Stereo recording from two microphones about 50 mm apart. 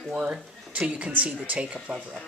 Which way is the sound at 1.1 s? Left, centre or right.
Right.